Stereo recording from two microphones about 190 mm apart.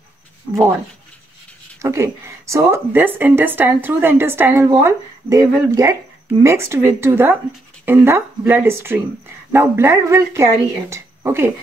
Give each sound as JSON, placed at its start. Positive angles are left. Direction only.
{"t": 1.8, "sound": "speech", "side_deg": -15}